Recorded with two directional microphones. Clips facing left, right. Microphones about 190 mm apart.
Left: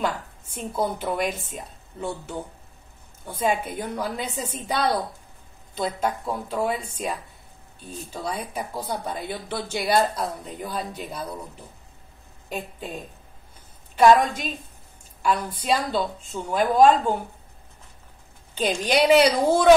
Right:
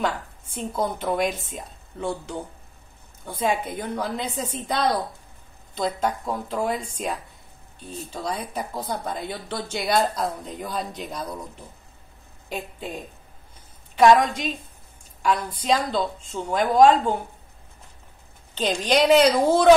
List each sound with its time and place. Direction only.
0.6 s a woman's voice: 5° left (ahead or behind)
3.3 s speech: 10° left (ahead or behind)
12.4 s a woman's voice: centre (ahead or behind)
18.6 s speech: 10° left (ahead or behind)